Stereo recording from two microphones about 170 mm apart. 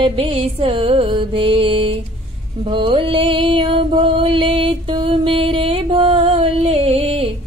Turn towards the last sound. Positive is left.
turn(degrees=-35)  # may be behind; listen again after turning